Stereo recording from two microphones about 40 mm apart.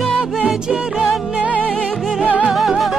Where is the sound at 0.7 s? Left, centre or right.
Right.